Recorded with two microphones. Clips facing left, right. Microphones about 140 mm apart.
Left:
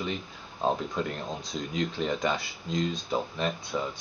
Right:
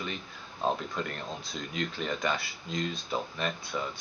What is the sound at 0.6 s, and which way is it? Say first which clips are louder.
Speech: left 3 dB; 15° left (ahead or behind).